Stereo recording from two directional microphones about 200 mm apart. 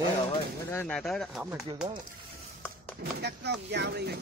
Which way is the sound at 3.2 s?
55° right (ahead or behind).